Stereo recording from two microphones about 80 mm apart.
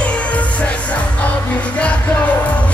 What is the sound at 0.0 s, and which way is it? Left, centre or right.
Music, centre.